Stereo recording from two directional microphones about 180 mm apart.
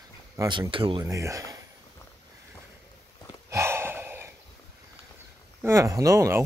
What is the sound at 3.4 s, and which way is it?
Gasp, 15° right (ahead or behind).